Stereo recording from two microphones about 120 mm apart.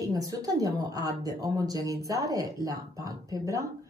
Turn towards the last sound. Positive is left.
turn(degrees=-25)  # may be behind; listen again after turning